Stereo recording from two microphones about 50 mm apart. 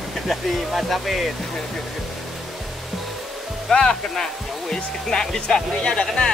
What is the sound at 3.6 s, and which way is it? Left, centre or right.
Speech, centre.